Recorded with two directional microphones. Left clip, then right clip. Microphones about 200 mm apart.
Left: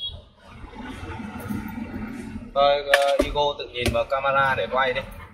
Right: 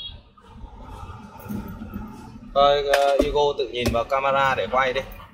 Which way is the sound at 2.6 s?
40° right (ahead or behind).